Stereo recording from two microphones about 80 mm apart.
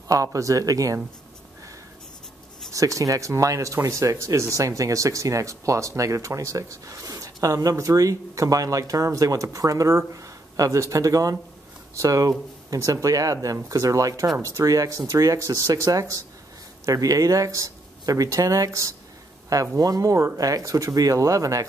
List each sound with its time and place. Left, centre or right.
0.1 s speech: right
2.7 s speech: right